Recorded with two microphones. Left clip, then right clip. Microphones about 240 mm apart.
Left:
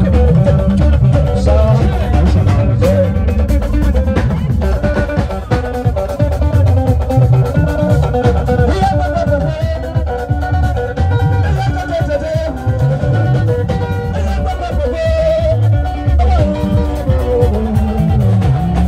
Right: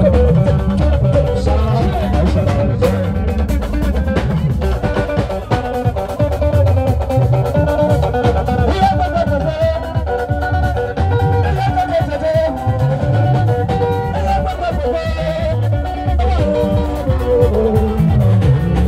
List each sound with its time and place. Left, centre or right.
8.6 s music: right